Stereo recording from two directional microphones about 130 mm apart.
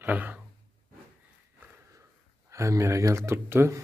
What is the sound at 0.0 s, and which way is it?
Speech, 15° right (ahead or behind).